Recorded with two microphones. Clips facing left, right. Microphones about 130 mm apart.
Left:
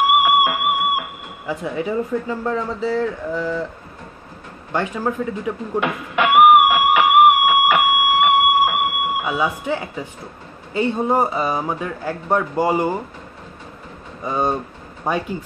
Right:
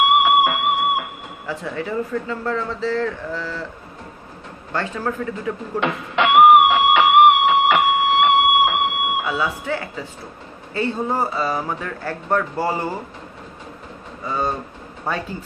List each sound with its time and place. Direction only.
0.0 s music: 10° left (ahead or behind)
1.5 s speech: 15° left (ahead or behind)
4.7 s speech: 15° left (ahead or behind)
6.9 s music: 10° left (ahead or behind)
9.2 s speech: 15° left (ahead or behind)
14.2 s speech: 20° left (ahead or behind)